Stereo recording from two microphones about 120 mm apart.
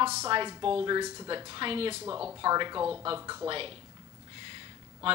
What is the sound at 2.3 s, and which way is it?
A woman's voice, 35° right (ahead or behind).